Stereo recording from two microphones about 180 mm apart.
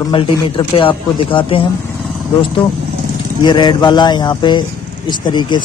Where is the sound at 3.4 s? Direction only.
25° left (ahead or behind).